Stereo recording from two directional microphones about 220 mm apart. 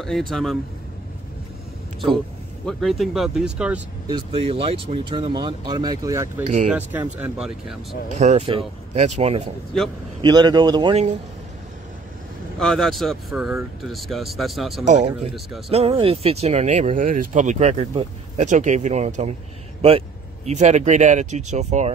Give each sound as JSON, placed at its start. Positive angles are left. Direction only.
{"t": 0.0, "sound": "speech", "side_deg": 0}
{"t": 2.6, "sound": "speech", "side_deg": 0}
{"t": 4.1, "sound": "speech", "side_deg": -25}
{"t": 8.1, "sound": "speech", "side_deg": -30}
{"t": 9.7, "sound": "speech", "side_deg": 0}
{"t": 10.2, "sound": "speech", "side_deg": -20}
{"t": 12.5, "sound": "speech", "side_deg": 0}
{"t": 15.7, "sound": "speech", "side_deg": -25}
{"t": 20.4, "sound": "speech", "side_deg": -30}